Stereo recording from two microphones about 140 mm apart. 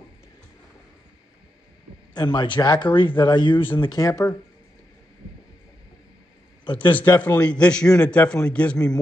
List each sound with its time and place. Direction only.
2.1 s speech: 35° left (ahead or behind)
6.6 s a man's voice: 35° left (ahead or behind)
7.2 s a man's voice: 10° left (ahead or behind)